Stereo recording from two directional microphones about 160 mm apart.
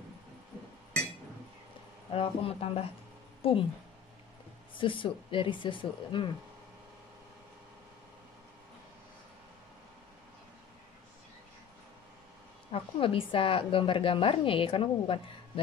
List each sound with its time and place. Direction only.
2.1 s a woman's voice: 35° left (ahead or behind)
4.7 s a woman's voice: 30° left (ahead or behind)
12.7 s a woman's voice: 35° left (ahead or behind)